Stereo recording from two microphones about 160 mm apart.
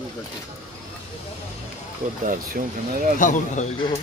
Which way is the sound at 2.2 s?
60° right (ahead or behind).